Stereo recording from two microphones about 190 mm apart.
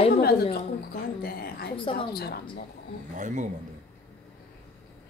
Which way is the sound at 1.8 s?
30° left (ahead or behind).